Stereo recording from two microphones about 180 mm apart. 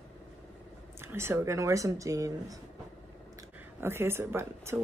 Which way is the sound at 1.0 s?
15° right (ahead or behind).